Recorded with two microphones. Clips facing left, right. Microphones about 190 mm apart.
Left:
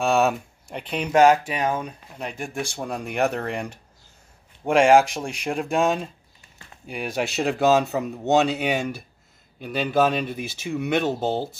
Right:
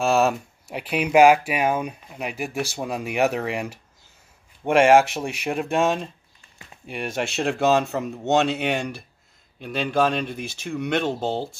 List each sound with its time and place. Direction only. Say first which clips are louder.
0.0 s speech: right 1 dB; centre (ahead or behind)